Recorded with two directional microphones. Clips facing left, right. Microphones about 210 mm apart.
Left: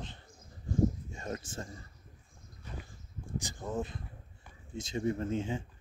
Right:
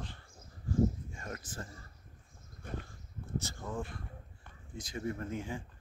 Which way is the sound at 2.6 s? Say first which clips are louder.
Right 4 dB; 50° right (ahead or behind).